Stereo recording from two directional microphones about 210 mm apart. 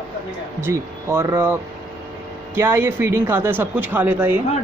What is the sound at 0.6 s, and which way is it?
Speech, 10° right (ahead or behind).